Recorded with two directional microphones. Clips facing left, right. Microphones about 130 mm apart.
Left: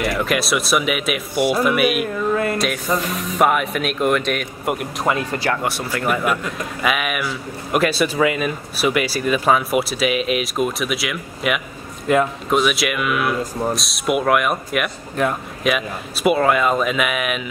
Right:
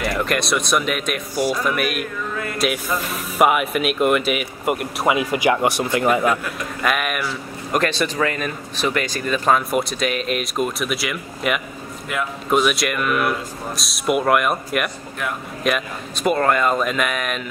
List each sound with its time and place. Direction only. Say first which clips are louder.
0.0 s speech: left 1 dB; centre (ahead or behind)
1.3 s speech: left 3 dB; 60° left (ahead or behind)
1.6 s speech: left 5 dB; 5° left (ahead or behind); by 6.4 s 20° right (ahead or behind)
6.8 s speech: even; centre (ahead or behind)
12.1 s a man's voice: left 9 dB; 35° left (ahead or behind)
12.4 s speech: even; centre (ahead or behind)